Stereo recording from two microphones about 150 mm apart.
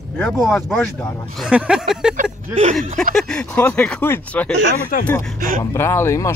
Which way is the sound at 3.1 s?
5° left (ahead or behind).